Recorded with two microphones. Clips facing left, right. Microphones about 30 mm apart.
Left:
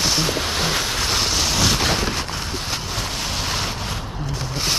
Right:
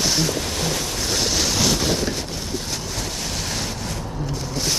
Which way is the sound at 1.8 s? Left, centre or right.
Left.